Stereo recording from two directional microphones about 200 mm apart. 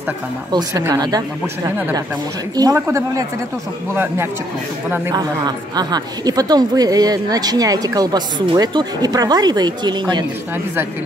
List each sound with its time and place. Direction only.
0.5 s a woman's voice: 20° right (ahead or behind)